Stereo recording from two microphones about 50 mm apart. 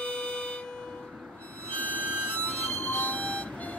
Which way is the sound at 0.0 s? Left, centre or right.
Left.